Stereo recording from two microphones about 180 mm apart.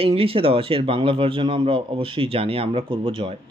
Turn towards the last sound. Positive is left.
turn(degrees=-30)  # may be behind; listen again after turning